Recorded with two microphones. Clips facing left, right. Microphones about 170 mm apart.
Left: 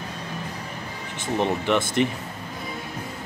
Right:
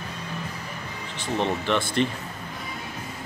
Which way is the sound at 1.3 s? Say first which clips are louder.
Left 2 dB; 15° left (ahead or behind).